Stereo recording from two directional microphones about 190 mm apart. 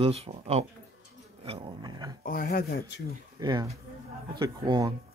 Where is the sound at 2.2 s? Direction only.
50° left (ahead or behind).